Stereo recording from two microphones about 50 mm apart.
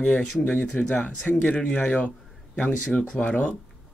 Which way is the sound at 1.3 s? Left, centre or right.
Left.